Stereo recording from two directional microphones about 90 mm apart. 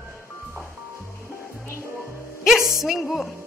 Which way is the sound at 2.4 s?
5° right (ahead or behind).